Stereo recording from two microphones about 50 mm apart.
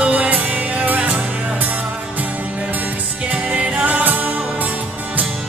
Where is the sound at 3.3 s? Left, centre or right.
Right.